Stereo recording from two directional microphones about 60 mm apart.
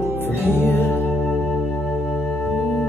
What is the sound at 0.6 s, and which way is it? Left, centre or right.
Music, left.